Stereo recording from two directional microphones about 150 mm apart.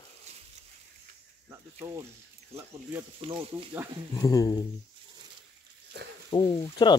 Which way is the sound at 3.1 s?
35° right (ahead or behind).